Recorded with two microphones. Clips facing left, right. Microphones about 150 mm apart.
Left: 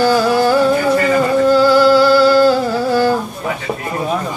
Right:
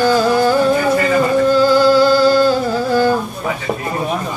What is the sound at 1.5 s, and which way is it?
Music, 15° right (ahead or behind).